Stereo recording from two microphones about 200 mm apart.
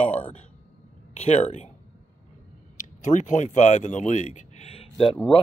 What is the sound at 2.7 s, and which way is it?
Speech, 40° left (ahead or behind).